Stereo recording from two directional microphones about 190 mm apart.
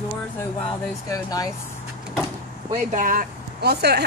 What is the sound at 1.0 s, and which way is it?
Speech, 20° left (ahead or behind).